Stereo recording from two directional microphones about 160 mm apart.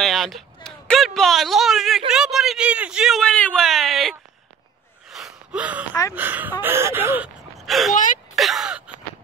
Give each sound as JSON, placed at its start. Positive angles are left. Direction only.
{"t": 0.0, "sound": "speech", "side_deg": 0}
{"t": 5.1, "sound": "gasp", "side_deg": -5}
{"t": 7.5, "sound": "gasp", "side_deg": 0}
{"t": 7.9, "sound": "speech", "side_deg": 55}
{"t": 8.4, "sound": "a sound", "side_deg": 0}